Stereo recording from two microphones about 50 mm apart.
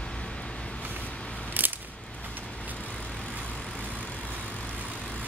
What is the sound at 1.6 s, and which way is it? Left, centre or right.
Scissors, right.